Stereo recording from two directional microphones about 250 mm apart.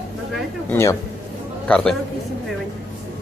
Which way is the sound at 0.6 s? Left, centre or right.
Centre.